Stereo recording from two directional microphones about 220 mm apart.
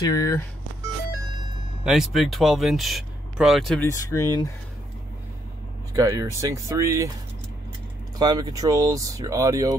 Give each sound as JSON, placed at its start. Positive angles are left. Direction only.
{"t": 0.0, "sound": "speech", "side_deg": 15}
{"t": 1.9, "sound": "speech", "side_deg": 0}
{"t": 3.8, "sound": "speech", "side_deg": 15}
{"t": 5.9, "sound": "speech", "side_deg": -15}
{"t": 8.2, "sound": "speech", "side_deg": -20}